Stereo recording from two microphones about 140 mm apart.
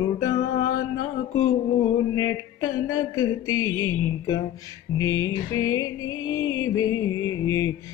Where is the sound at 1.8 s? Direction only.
25° left (ahead or behind).